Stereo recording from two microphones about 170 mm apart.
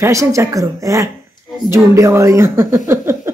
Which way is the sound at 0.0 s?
20° right (ahead or behind).